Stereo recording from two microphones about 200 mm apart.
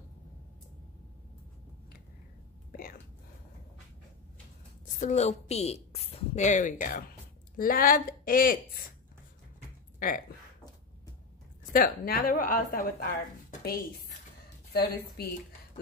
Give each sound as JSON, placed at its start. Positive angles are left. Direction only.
{"t": 2.7, "sound": "whispering", "side_deg": 45}
{"t": 5.0, "sound": "a woman's voice", "side_deg": 35}
{"t": 9.9, "sound": "a sound", "side_deg": 45}
{"t": 11.7, "sound": "a woman's voice", "side_deg": 45}
{"t": 13.5, "sound": "a sound", "side_deg": 50}
{"t": 14.7, "sound": "a woman's voice", "side_deg": 50}